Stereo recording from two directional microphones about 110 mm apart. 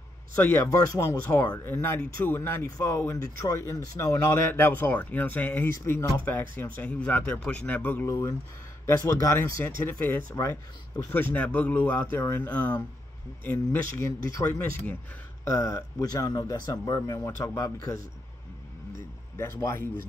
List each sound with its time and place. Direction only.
0.4 s speech: 20° left (ahead or behind)
8.1 s speech: 25° left (ahead or behind)
19.3 s speech: 25° left (ahead or behind)